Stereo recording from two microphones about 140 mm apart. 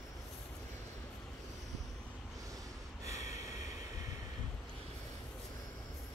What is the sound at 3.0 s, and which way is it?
Snort, 25° right (ahead or behind).